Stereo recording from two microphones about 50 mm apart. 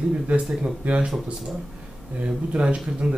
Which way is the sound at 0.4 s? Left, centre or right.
Centre.